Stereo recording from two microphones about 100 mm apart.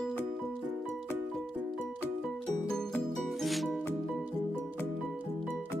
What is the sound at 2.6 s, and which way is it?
Music, 5° left (ahead or behind).